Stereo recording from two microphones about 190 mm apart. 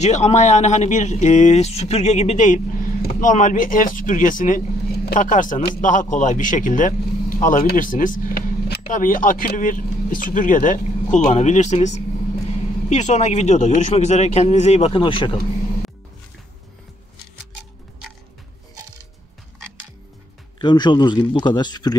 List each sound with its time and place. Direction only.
0.0 s a man's voice: 35° left (ahead or behind)
20.5 s speech: 25° left (ahead or behind)